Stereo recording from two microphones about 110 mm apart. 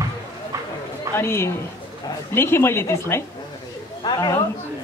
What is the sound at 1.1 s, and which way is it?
A man's voice, 25° left (ahead or behind).